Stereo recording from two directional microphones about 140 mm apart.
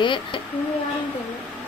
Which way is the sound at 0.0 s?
35° left (ahead or behind).